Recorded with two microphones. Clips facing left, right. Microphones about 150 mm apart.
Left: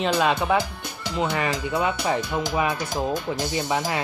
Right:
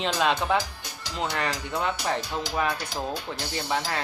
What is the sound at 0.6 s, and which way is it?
Music, 55° left (ahead or behind).